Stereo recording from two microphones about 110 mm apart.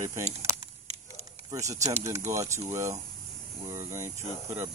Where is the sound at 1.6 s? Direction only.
30° right (ahead or behind).